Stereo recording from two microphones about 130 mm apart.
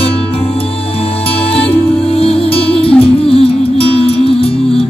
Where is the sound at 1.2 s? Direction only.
45° left (ahead or behind).